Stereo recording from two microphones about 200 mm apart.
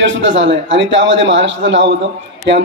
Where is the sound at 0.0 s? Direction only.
65° right (ahead or behind).